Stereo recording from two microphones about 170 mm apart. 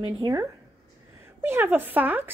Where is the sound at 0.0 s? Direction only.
20° right (ahead or behind).